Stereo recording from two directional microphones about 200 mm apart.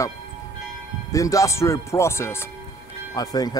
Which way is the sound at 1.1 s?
15° left (ahead or behind).